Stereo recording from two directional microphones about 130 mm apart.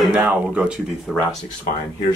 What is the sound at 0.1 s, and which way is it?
Speech, 10° right (ahead or behind).